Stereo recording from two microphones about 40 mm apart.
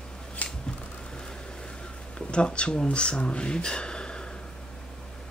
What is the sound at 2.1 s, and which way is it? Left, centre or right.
Speech, left.